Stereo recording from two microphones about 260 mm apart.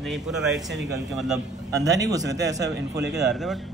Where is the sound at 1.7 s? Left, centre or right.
Centre.